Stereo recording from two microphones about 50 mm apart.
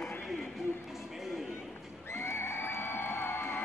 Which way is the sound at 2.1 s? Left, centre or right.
Left.